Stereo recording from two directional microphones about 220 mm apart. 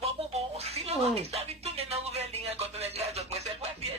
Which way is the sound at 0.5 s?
30° right (ahead or behind).